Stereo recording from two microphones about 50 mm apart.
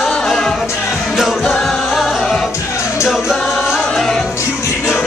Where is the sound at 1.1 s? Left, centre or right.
Centre.